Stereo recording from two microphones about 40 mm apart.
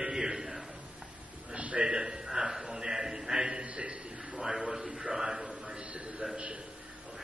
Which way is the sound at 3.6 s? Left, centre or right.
Right.